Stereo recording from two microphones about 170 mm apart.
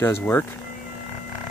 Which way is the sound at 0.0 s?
10° left (ahead or behind).